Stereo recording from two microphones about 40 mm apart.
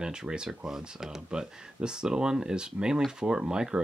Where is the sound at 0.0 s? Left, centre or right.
Centre.